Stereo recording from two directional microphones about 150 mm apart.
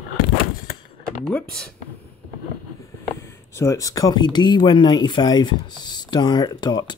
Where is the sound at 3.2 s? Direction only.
20° left (ahead or behind).